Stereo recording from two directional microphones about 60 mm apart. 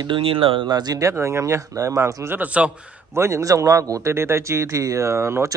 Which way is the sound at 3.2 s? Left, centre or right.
Right.